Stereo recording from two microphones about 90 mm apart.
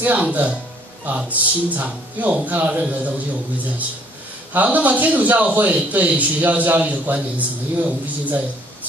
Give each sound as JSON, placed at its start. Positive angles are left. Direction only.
{"t": 0.0, "sound": "a man's voice", "side_deg": -15}
{"t": 4.5, "sound": "a man's voice", "side_deg": -15}